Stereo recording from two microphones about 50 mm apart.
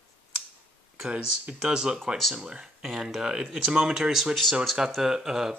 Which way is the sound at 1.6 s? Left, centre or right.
Centre.